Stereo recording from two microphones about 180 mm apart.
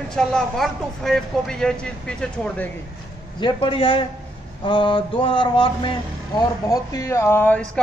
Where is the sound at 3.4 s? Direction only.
30° left (ahead or behind).